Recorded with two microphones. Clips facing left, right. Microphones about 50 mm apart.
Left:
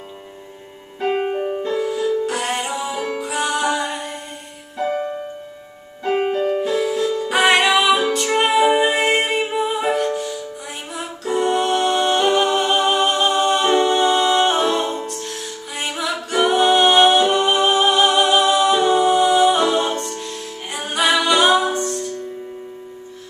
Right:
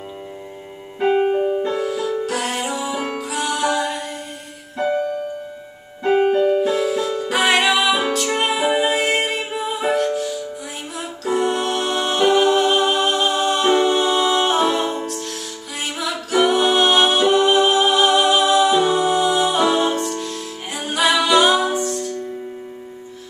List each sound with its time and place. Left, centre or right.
1.1 s music: centre
6.6 s music: centre